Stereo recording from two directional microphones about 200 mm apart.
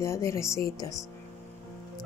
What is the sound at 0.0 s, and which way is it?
Speech, 15° left (ahead or behind).